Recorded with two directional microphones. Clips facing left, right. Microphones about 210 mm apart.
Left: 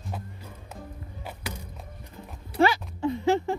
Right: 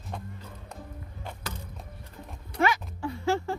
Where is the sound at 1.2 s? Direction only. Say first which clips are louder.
Left 2 dB; 10° left (ahead or behind).